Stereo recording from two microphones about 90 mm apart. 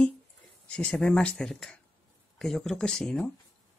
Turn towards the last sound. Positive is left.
turn(degrees=10)  # may be behind; listen again after turning